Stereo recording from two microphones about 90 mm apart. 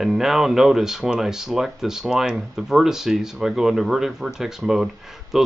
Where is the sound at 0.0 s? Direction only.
5° right (ahead or behind).